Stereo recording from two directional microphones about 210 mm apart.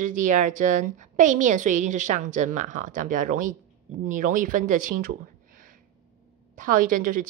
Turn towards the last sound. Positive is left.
turn(degrees=-40)  # may be behind; listen again after turning